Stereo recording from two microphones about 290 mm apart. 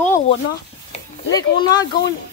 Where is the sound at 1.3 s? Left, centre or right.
Centre.